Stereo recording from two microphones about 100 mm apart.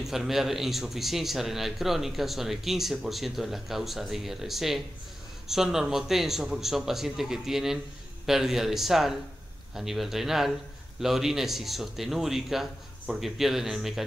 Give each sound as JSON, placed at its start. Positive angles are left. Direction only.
{"t": 0.0, "sound": "a man's voice", "side_deg": -5}